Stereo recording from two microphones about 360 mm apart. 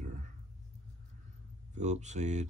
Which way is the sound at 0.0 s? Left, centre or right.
Centre.